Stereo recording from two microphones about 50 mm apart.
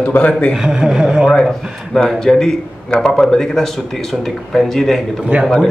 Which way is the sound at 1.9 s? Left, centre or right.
Centre.